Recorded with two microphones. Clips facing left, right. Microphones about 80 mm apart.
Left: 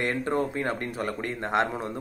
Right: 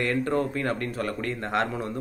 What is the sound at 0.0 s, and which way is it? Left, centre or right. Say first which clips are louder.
Speech: right 1 dB; left.